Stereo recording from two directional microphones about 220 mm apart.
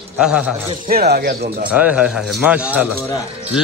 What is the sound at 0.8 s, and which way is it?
Speech, 45° right (ahead or behind).